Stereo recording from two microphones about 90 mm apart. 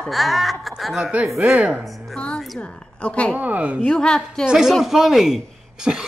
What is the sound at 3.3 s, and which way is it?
Speech, 15° right (ahead or behind).